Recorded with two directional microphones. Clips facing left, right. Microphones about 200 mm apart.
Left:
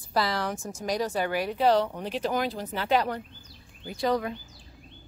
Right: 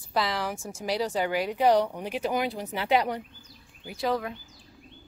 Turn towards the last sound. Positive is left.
turn(degrees=-5)  # may be behind; listen again after turning